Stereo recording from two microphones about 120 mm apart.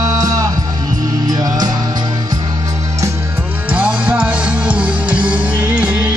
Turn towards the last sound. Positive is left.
turn(degrees=-10)  # may be behind; listen again after turning